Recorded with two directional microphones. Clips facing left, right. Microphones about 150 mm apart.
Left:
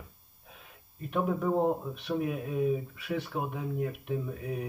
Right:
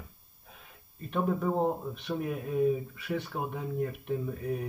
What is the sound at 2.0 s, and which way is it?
Speech, 5° left (ahead or behind).